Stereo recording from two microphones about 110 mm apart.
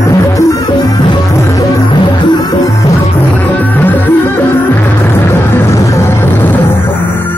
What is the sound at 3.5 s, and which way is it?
Music, 15° left (ahead or behind).